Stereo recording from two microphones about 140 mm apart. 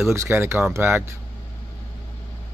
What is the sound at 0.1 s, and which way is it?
Speech, 20° right (ahead or behind).